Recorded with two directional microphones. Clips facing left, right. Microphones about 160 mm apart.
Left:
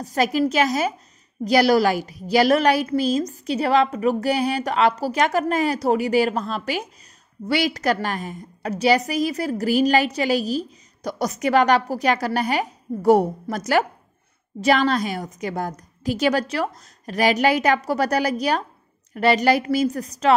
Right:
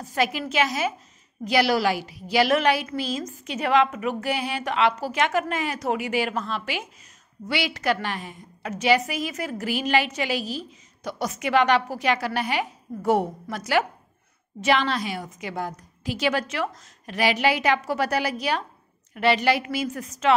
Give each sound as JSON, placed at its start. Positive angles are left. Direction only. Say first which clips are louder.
{"t": 0.0, "sound": "a woman's voice", "louder": "left 6 dB", "side_deg": 40}